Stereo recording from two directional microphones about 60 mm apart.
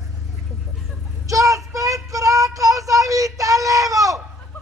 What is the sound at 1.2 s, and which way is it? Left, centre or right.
Child singing, right.